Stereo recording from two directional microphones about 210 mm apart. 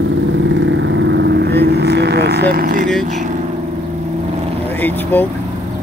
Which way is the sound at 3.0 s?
35° right (ahead or behind).